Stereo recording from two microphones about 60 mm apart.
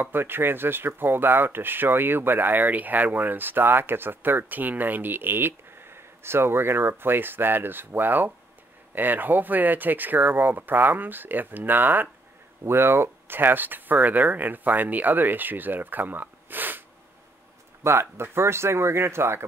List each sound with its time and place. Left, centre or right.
0.0 s speech: right
17.8 s speech: right